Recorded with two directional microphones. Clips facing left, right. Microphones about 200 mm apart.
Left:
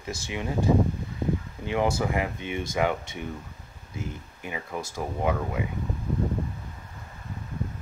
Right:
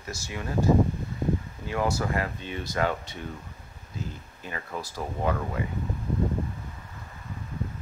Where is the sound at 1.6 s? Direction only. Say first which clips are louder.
Left 3 dB; 20° left (ahead or behind).